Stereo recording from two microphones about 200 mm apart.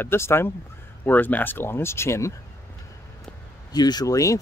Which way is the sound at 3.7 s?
20° left (ahead or behind).